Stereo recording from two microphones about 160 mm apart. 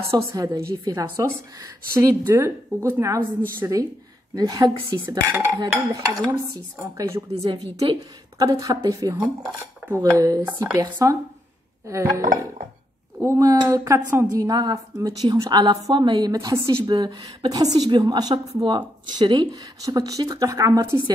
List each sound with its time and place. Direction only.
0.3 s a woman's voice: 20° right (ahead or behind)